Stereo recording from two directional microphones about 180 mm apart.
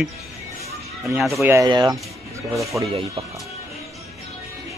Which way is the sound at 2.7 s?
5° right (ahead or behind).